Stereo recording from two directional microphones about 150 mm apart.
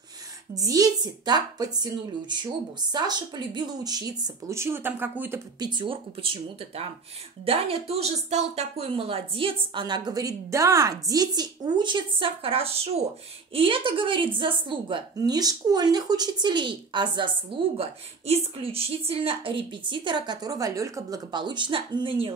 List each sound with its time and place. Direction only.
0.6 s speech: 25° right (ahead or behind)
5.6 s speech: 30° right (ahead or behind)